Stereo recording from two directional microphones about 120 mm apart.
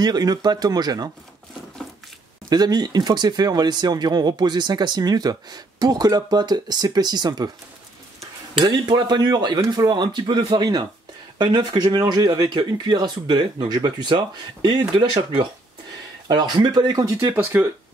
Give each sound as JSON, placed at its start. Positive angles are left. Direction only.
{"t": 0.0, "sound": "speech", "side_deg": -35}
{"t": 2.5, "sound": "speech", "side_deg": -35}
{"t": 8.5, "sound": "speech", "side_deg": -40}